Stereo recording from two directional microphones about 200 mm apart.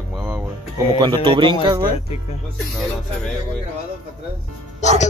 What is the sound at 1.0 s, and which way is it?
Speech, 25° right (ahead or behind).